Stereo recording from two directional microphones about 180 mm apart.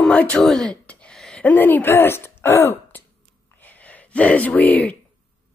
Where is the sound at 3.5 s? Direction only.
10° left (ahead or behind).